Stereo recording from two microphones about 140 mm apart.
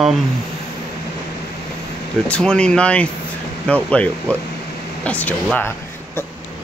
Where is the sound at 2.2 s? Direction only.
5° left (ahead or behind).